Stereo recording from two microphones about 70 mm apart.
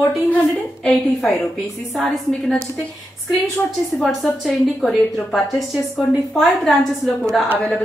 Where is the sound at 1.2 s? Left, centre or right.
Centre.